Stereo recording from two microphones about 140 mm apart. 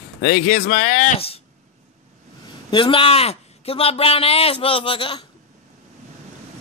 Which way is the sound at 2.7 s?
40° left (ahead or behind).